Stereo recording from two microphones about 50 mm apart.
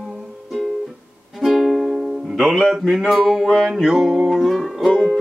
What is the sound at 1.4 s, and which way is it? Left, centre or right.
Music, centre.